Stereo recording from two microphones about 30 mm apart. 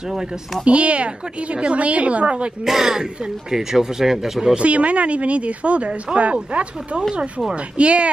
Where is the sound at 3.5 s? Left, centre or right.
Centre.